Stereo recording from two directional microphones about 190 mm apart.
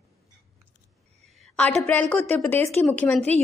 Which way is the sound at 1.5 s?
5° left (ahead or behind).